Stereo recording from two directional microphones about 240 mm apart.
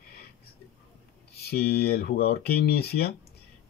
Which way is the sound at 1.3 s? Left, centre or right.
Left.